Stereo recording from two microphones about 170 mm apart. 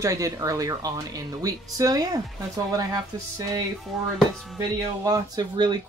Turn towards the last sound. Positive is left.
turn(degrees=-25)  # may be behind; listen again after turning